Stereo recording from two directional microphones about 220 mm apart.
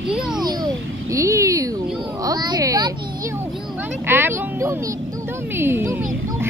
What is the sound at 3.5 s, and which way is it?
Speech, centre (ahead or behind).